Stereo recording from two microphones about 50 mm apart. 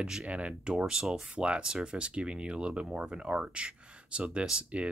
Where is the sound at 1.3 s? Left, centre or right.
Right.